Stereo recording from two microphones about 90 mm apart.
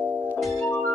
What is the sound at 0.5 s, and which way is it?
Music, 25° left (ahead or behind).